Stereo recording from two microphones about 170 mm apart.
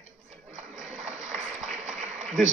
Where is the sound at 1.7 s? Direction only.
45° right (ahead or behind).